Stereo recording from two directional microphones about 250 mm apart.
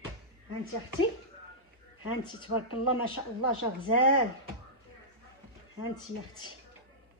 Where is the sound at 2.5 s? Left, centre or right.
Left.